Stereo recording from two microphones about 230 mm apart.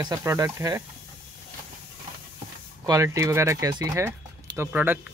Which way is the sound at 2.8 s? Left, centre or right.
Centre.